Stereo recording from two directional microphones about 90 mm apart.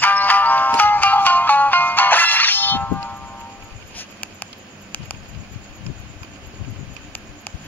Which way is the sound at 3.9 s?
20° left (ahead or behind).